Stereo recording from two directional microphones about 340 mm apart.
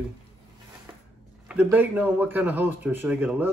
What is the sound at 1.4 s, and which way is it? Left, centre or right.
A man's voice, centre.